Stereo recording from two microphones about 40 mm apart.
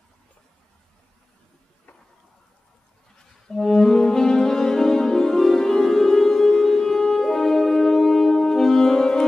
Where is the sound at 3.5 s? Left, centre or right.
Centre.